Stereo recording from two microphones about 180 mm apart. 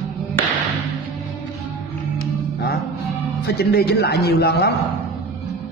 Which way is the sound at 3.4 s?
60° left (ahead or behind).